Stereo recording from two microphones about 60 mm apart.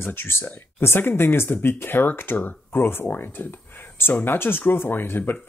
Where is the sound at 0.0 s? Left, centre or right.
Left.